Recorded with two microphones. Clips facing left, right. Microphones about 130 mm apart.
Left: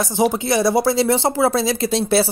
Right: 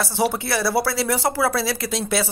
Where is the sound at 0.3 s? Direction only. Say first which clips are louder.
Left 5 dB; 20° left (ahead or behind).